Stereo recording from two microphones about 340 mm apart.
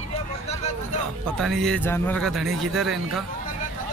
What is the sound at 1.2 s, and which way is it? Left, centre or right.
Speech, centre.